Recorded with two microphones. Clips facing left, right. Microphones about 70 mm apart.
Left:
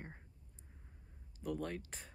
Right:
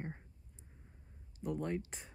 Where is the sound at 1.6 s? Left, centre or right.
Centre.